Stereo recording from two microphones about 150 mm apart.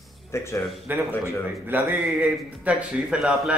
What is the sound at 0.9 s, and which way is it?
A man's voice, 10° right (ahead or behind).